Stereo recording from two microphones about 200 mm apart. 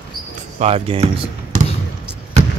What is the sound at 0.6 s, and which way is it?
Speech, 30° right (ahead or behind).